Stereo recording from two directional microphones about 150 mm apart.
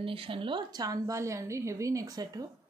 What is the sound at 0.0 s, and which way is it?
A woman's voice, 35° right (ahead or behind).